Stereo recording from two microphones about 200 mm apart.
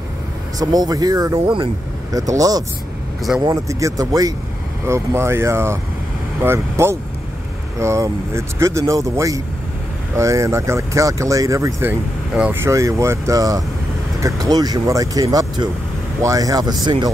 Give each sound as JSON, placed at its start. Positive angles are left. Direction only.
{"t": 0.6, "sound": "speech", "side_deg": -20}